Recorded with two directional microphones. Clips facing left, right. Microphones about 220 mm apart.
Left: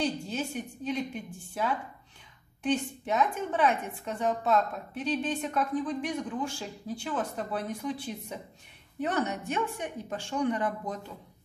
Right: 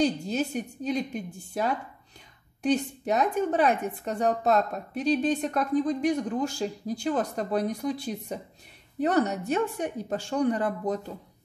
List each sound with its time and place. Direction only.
0.0 s a woman's voice: 40° right (ahead or behind)